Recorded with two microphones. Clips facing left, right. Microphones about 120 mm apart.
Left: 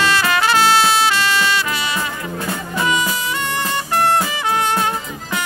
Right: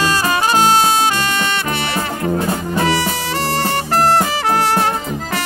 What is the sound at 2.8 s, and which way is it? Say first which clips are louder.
Music: left 1 dB; 70° right (ahead or behind).